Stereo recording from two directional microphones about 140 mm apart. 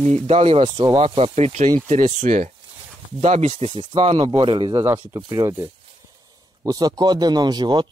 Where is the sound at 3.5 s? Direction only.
40° right (ahead or behind).